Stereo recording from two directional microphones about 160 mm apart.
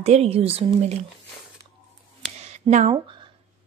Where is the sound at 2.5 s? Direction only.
45° right (ahead or behind).